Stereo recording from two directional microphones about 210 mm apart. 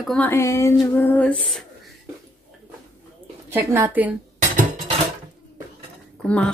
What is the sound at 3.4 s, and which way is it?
Speech, 10° right (ahead or behind).